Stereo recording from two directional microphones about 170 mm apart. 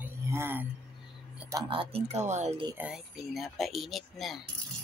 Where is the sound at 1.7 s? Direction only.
35° right (ahead or behind).